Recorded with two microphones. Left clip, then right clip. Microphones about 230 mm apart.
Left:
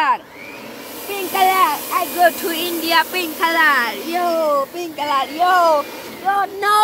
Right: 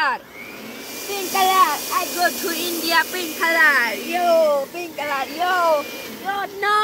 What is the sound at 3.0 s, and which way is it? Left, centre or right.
Speech, left.